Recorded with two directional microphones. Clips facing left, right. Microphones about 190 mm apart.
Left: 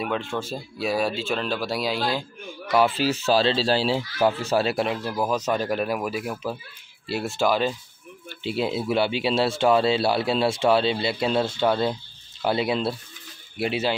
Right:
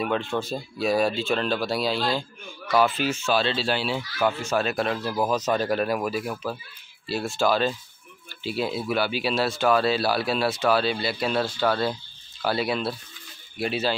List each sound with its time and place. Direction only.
0.0 s speech: 5° left (ahead or behind)
2.7 s speech: 30° left (ahead or behind)
4.8 s speech: 10° left (ahead or behind)